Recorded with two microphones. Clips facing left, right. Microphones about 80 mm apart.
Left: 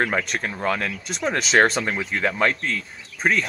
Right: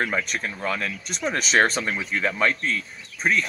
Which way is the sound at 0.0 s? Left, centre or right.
Left.